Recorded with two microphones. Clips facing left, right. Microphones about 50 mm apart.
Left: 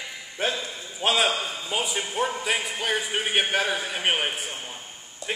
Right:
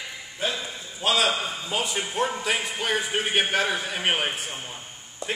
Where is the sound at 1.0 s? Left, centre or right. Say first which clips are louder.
Even; left.